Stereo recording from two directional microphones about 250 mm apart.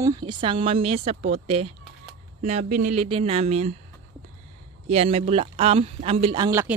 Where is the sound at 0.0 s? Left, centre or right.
Centre.